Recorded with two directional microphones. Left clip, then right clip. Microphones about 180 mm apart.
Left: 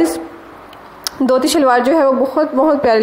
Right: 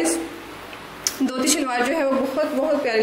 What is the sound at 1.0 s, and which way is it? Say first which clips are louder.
A woman's voice: left 9 dB; 45° left (ahead or behind).